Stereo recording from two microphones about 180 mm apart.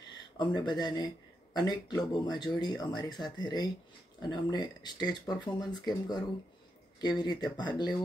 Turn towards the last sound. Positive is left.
turn(degrees=25)  # may be behind; listen again after turning